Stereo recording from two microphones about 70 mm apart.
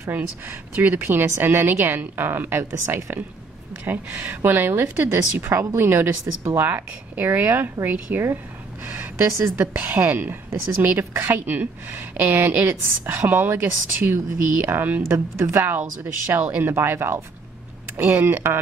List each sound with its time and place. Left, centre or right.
0.0 s a woman's voice: right
3.8 s a woman's voice: right